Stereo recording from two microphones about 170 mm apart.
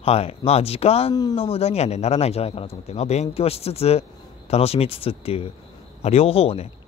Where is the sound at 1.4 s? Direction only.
35° left (ahead or behind).